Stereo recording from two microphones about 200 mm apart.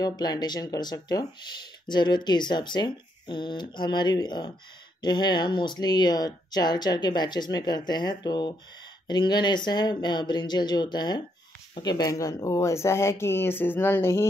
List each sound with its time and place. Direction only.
0.0 s speech: 20° left (ahead or behind)